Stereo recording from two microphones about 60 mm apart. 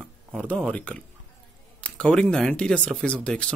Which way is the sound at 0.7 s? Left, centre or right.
Left.